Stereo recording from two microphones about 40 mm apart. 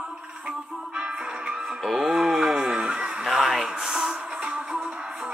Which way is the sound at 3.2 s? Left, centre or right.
Centre.